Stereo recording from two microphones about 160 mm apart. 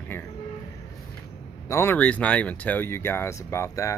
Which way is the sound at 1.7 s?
15° left (ahead or behind).